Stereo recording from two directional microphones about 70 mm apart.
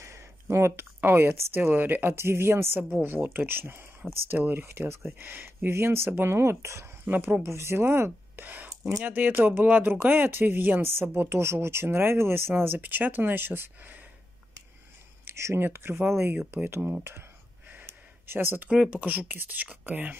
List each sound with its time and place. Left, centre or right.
0.0 s speech: right
5.7 s speech: right
7.1 s speech: right
7.4 s speech: right
8.6 s a sound: right
9.0 s speech: right
15.2 s speech: right
17.8 s a sound: right
18.7 s speech: centre